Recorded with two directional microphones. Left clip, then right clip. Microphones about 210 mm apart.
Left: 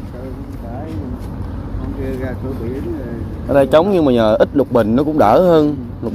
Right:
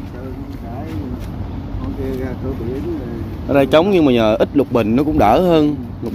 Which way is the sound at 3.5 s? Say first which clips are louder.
Left 1 dB; 5° right (ahead or behind).